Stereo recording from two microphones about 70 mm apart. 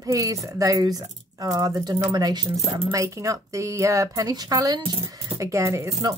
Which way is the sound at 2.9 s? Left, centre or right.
Right.